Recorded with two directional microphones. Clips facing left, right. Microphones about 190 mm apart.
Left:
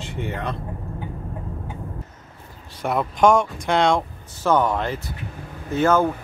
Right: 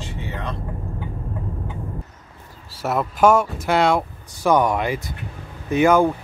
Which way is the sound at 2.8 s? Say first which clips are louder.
Right 1 dB; 5° right (ahead or behind).